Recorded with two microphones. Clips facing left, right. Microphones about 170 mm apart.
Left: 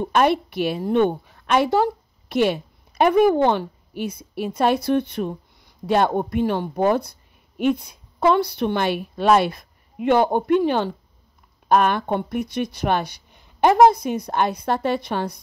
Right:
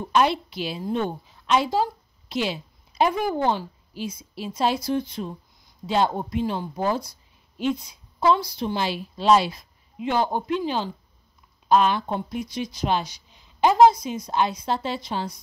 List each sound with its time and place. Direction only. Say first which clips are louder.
0.1 s a woman's voice: left 2 dB; 55° left (ahead or behind)